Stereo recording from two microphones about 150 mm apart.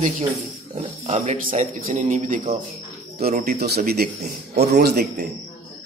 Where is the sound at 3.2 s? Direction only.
90° right.